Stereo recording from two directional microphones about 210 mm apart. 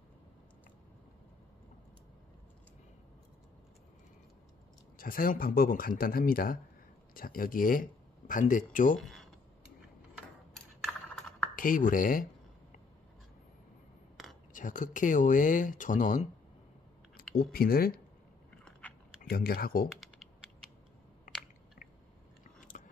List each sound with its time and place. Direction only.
4.9 s speech: 45° left (ahead or behind)
9.0 s a sound: centre (ahead or behind)
10.5 s computer keyboard: 5° left (ahead or behind)
11.5 s speech: 40° left (ahead or behind)
14.5 s speech: 40° left (ahead or behind)
17.3 s speech: 45° left (ahead or behind)
18.6 s biting: 5° left (ahead or behind)
19.2 s speech: 45° left (ahead or behind)
22.6 s chewing: 40° left (ahead or behind)